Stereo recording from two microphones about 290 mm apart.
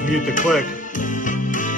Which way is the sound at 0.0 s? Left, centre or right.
Left.